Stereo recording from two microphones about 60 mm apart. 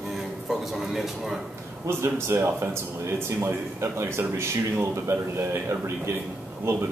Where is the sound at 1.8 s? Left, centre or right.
Right.